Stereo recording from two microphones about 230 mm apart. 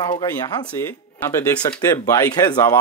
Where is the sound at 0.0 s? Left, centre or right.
Centre.